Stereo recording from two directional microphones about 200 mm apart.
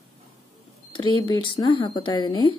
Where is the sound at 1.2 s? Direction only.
20° left (ahead or behind).